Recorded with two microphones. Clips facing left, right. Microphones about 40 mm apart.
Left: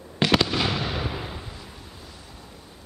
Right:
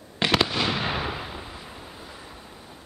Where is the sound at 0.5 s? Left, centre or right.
Centre.